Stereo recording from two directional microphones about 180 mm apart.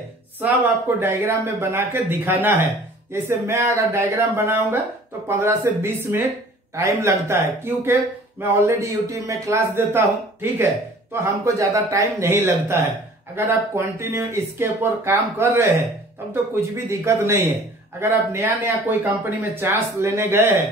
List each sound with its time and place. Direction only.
0.4 s speech: 10° right (ahead or behind)
16.7 s speech: 15° right (ahead or behind)